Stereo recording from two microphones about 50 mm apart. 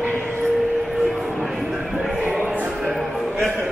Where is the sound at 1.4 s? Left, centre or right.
Centre.